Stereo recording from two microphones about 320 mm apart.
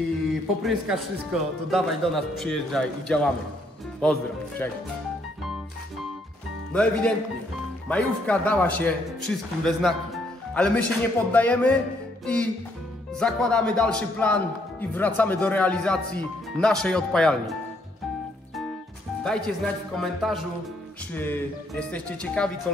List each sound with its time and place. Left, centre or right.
0.7 s speech: centre
6.7 s speech: centre
13.1 s speech: centre
19.2 s speech: centre